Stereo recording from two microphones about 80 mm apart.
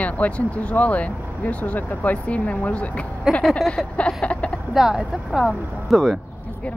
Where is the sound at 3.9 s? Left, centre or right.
Centre.